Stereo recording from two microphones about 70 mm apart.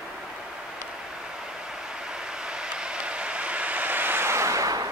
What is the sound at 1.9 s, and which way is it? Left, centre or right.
Vehicle, centre.